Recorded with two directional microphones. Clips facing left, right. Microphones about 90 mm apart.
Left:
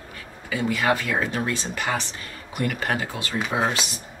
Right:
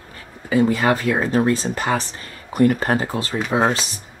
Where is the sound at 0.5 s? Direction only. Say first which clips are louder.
Right 6 dB; 35° right (ahead or behind).